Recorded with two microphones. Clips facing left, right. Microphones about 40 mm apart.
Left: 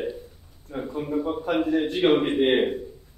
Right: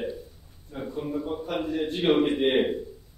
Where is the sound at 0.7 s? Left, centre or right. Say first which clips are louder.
Left 4 dB; left.